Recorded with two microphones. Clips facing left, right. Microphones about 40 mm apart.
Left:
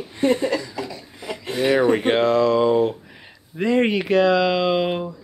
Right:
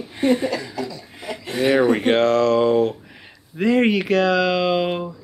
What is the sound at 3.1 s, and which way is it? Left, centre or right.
Speech, centre.